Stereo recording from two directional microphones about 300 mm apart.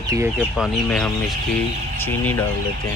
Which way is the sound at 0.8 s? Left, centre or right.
Centre.